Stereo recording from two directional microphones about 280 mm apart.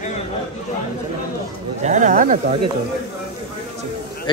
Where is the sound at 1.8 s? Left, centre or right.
Right.